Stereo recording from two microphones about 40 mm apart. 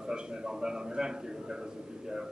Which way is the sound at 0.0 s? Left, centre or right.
Centre.